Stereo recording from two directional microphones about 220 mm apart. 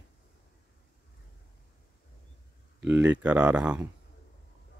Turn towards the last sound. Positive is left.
turn(degrees=-5)  # may be behind; listen again after turning